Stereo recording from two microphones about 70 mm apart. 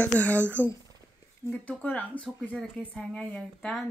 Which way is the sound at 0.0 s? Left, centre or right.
Left.